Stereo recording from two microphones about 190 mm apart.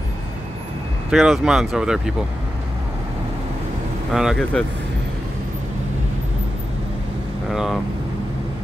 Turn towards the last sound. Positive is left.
turn(degrees=0)  # may be behind; listen again after turning